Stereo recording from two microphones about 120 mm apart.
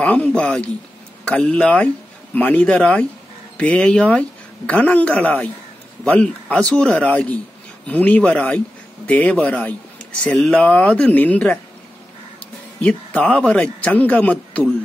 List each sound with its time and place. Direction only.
0.0 s speech: 10° left (ahead or behind)
12.8 s speech: 10° left (ahead or behind)